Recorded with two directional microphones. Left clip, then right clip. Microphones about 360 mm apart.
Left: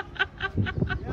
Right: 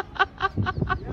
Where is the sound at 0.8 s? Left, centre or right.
Left.